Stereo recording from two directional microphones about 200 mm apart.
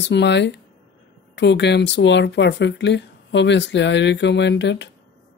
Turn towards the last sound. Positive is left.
turn(degrees=60)  # may be behind; listen again after turning